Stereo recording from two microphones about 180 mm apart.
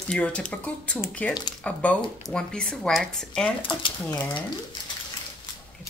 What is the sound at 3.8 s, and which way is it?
Speech, 25° left (ahead or behind).